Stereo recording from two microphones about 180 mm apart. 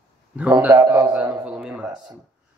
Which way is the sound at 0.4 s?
10° right (ahead or behind).